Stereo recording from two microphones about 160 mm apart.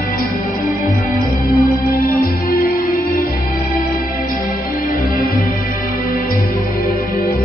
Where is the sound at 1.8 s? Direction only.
65° left (ahead or behind).